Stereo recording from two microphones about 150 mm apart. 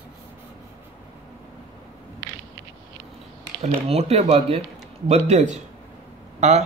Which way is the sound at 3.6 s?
45° right (ahead or behind).